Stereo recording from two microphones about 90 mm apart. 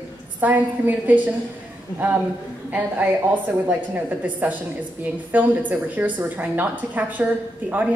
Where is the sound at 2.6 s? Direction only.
20° right (ahead or behind).